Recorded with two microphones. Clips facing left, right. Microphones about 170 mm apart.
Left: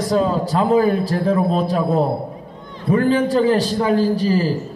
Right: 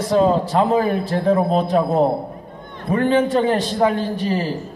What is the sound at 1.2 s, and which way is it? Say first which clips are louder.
Speech: right 3 dB; 35° right (ahead or behind).